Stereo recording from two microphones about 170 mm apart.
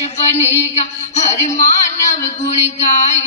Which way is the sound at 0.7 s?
40° left (ahead or behind).